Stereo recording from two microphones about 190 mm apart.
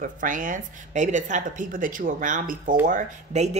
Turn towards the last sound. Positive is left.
turn(degrees=-40)  # may be behind; listen again after turning